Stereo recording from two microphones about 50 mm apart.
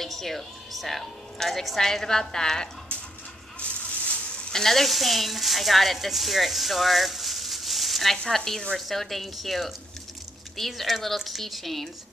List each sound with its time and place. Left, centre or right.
0.0 s a woman's voice: centre
3.5 s a sound: left
4.5 s speech: centre
8.2 s speech: centre
8.7 s speech: centre